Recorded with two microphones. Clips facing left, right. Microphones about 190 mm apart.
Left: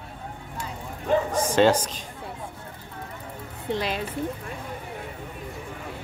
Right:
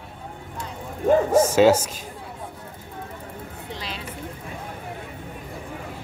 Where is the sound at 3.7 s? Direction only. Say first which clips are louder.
Left 9 dB; 55° left (ahead or behind).